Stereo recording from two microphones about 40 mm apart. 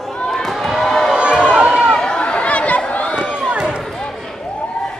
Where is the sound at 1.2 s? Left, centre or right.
Right.